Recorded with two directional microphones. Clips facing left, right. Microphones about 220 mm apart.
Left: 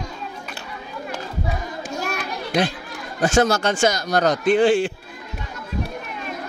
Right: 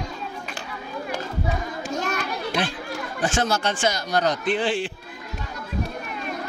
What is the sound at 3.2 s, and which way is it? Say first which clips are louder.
A man's voice: left 6 dB; 40° left (ahead or behind).